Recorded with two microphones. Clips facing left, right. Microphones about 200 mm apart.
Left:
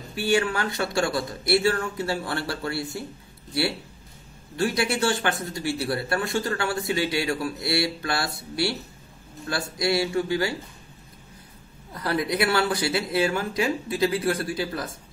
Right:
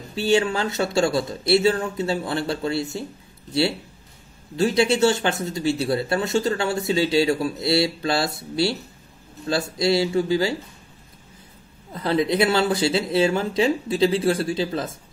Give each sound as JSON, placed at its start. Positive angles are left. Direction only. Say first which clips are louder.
{"t": 0.1, "sound": "speech", "louder": "right 3 dB", "side_deg": -25}
{"t": 4.6, "sound": "speech", "louder": "right 6 dB", "side_deg": -25}
{"t": 9.5, "sound": "speech", "louder": "right 4 dB", "side_deg": -25}
{"t": 11.9, "sound": "speech", "louder": "right 5 dB", "side_deg": -20}